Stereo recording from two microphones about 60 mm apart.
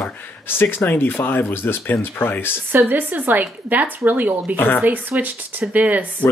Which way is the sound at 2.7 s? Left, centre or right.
Right.